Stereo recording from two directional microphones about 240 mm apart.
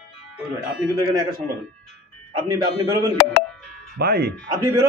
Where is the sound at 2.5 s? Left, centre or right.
Centre.